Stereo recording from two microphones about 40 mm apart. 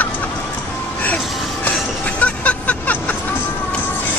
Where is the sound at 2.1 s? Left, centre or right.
Left.